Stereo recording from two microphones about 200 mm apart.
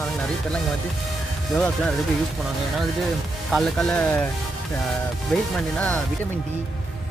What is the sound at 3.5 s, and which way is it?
Speech, centre (ahead or behind).